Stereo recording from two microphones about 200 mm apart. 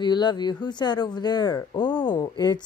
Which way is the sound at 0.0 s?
20° left (ahead or behind).